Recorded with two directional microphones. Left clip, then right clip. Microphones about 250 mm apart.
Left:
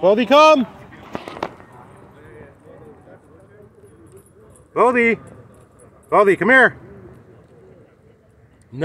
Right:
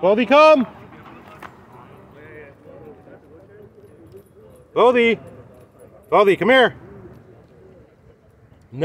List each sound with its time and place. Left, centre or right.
0.0 s speech: centre
2.1 s clip-clop: centre
4.7 s speech: centre